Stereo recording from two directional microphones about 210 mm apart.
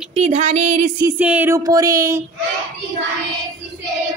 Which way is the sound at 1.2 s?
10° right (ahead or behind).